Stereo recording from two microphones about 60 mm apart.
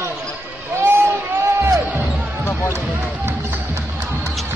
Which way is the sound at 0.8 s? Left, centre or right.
Right.